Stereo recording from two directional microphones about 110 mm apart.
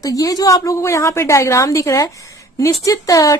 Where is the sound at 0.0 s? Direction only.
30° left (ahead or behind).